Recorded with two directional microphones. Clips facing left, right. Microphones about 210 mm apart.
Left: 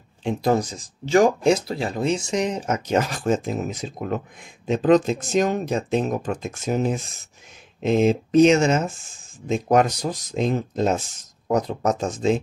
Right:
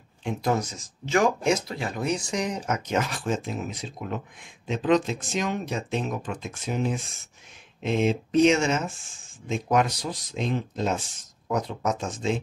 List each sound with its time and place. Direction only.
0.2 s speech: 35° left (ahead or behind)